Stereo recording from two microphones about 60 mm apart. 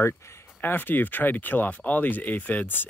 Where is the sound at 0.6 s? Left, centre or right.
Left.